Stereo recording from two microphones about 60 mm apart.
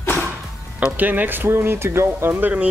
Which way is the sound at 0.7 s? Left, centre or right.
Right.